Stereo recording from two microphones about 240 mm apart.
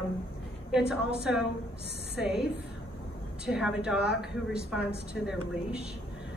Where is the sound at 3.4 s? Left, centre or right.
Centre.